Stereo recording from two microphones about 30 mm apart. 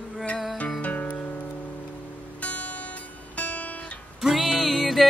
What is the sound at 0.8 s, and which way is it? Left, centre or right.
Music, left.